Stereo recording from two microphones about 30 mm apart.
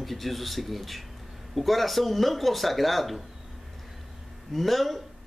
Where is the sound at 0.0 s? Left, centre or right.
Centre.